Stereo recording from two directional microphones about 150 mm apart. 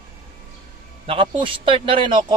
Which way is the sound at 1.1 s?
35° right (ahead or behind).